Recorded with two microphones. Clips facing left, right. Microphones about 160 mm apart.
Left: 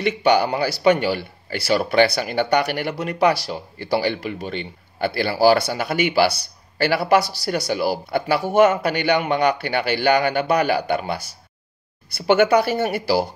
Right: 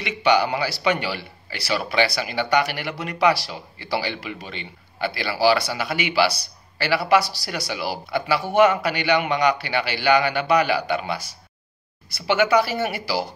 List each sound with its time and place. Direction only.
0.0 s speech: 45° left (ahead or behind)
12.3 s speech: 50° left (ahead or behind)